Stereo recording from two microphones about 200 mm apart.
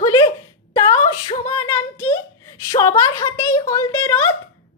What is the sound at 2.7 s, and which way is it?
A woman's voice, 15° left (ahead or behind).